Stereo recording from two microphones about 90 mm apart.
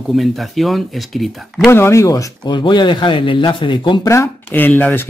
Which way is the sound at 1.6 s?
30° left (ahead or behind).